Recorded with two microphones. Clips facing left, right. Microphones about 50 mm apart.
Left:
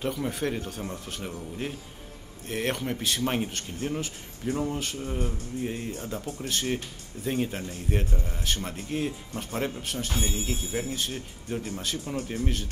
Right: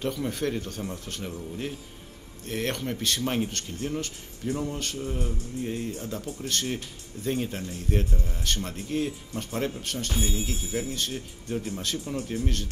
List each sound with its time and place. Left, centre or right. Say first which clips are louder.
0.0 s speech: even; centre
12.0 s speech: even; centre